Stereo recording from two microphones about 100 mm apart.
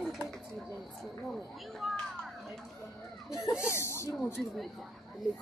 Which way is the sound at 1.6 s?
Centre (ahead or behind).